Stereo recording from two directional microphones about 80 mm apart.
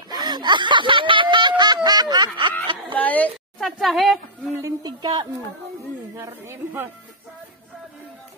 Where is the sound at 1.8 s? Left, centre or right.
Right.